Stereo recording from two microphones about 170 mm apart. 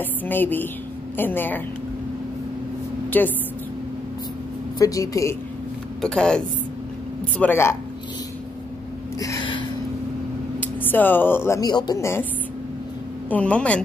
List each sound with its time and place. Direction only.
0.0 s a woman's voice: 10° left (ahead or behind)
3.1 s a woman's voice: 10° left (ahead or behind)
4.7 s a woman's voice: 20° left (ahead or behind)
5.9 s a woman's voice: 5° left (ahead or behind)
9.2 s a sound: 25° left (ahead or behind)
10.6 s speech: 10° left (ahead or behind)
13.3 s a woman's voice: 5° left (ahead or behind)